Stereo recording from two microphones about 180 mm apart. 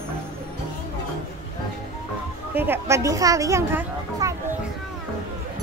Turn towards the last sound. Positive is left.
turn(degrees=-15)  # may be behind; listen again after turning